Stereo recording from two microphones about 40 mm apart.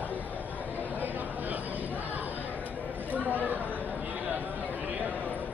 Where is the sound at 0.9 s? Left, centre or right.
Right.